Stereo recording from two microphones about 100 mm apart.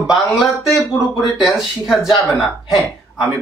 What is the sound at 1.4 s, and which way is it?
A man's voice, 5° right (ahead or behind).